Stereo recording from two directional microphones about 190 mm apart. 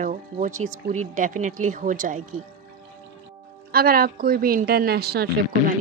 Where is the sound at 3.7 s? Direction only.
50° right (ahead or behind).